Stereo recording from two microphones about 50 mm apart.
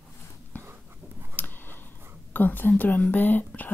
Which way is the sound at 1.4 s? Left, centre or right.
Left.